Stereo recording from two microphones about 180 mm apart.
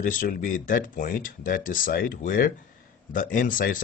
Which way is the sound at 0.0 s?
45° left (ahead or behind).